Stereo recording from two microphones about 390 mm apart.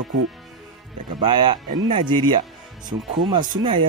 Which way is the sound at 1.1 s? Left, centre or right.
Centre.